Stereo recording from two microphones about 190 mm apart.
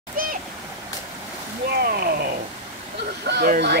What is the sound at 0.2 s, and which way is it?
Splash, 50° right (ahead or behind).